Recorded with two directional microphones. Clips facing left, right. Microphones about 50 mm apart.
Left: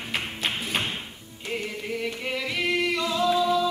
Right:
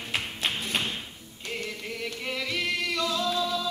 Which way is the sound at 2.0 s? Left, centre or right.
Centre.